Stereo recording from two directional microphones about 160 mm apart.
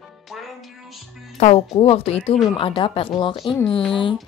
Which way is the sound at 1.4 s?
40° left (ahead or behind).